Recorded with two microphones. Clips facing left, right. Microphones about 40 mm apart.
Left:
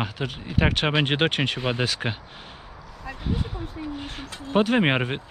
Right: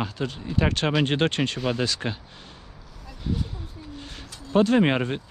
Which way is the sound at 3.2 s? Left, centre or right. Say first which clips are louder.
Even; left.